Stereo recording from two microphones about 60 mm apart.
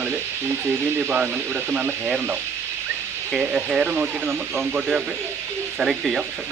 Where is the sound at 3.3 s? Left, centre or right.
Centre.